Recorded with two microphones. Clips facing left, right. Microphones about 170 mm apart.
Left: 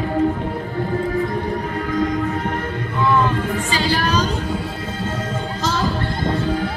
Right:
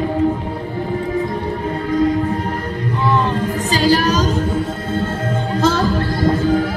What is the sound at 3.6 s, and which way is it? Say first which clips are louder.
Music: right 10 dB; 40° right (ahead or behind).